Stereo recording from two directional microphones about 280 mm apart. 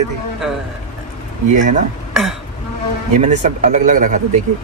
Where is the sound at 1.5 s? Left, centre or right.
Right.